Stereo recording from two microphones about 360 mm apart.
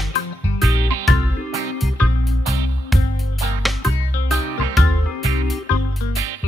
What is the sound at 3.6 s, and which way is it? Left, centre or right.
Music, centre.